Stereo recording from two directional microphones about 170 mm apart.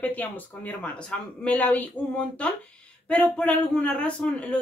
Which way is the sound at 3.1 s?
5° left (ahead or behind).